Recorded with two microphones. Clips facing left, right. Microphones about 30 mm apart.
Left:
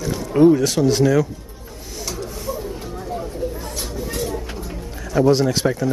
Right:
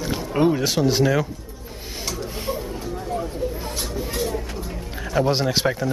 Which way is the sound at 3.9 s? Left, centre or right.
Centre.